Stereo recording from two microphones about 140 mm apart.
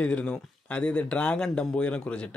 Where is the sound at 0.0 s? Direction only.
10° left (ahead or behind).